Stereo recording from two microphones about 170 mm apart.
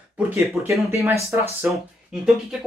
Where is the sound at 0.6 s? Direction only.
Centre (ahead or behind).